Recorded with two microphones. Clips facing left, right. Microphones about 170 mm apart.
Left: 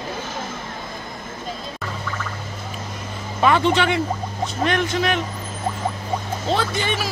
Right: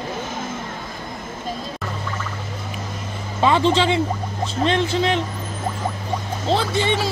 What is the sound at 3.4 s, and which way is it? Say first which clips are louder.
Speech: right 1 dB; 20° right (ahead or behind).